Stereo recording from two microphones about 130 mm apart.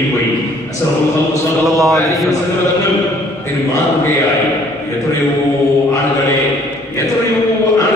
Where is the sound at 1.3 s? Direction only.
25° right (ahead or behind).